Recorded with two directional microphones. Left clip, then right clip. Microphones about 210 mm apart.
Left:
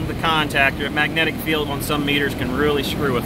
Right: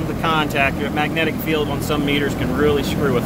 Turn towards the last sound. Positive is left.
turn(degrees=0)  # may be behind; listen again after turning